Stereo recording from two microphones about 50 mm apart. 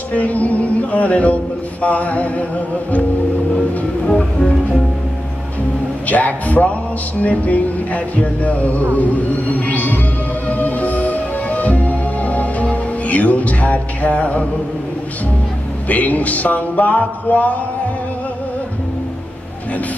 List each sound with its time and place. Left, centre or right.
0.1 s speech: left
4.1 s music: centre
6.0 s speech: left
9.5 s music: left
15.9 s speech: left